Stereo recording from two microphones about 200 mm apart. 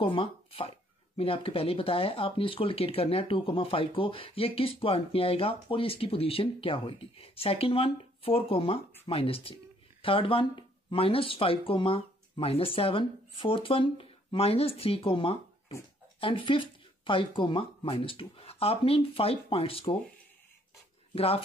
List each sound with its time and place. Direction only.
0.0 s speech: 25° left (ahead or behind)
21.1 s speech: 30° left (ahead or behind)